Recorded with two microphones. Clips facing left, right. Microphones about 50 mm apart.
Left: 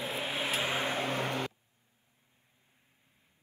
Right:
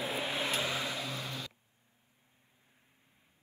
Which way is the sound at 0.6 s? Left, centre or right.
Left.